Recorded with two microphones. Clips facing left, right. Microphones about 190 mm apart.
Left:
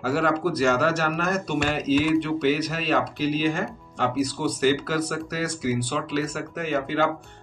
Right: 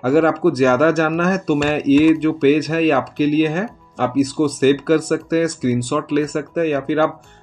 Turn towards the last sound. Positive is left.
turn(degrees=-50)  # may be behind; listen again after turning